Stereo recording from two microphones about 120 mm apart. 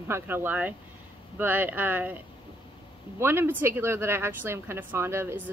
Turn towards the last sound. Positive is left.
turn(degrees=-20)  # may be behind; listen again after turning